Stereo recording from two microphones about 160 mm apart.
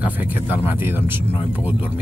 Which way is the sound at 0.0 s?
10° right (ahead or behind).